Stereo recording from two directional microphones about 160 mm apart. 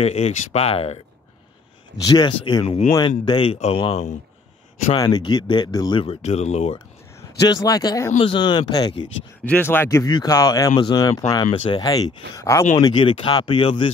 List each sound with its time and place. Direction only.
0.0 s speech: 40° left (ahead or behind)
2.0 s speech: 30° left (ahead or behind)
4.9 s speech: 25° left (ahead or behind); by 6.8 s 45° left (ahead or behind)
7.3 s speech: 25° left (ahead or behind)
9.4 s speech: 10° left (ahead or behind); by 13.8 s 30° left (ahead or behind)